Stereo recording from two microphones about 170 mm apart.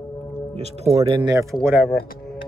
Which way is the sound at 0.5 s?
40° right (ahead or behind).